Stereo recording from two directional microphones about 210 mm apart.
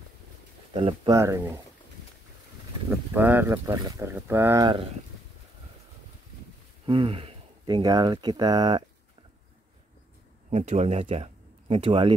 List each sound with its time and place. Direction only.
0.7 s speech: 25° right (ahead or behind)
1.1 s speech: 15° right (ahead or behind)
2.9 s speech: 10° right (ahead or behind)
6.9 s speech: 25° right (ahead or behind)
10.5 s speech: 30° right (ahead or behind)